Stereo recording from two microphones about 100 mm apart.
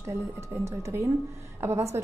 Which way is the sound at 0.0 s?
25° right (ahead or behind).